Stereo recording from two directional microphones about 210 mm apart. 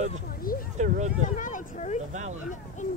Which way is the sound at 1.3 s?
40° left (ahead or behind).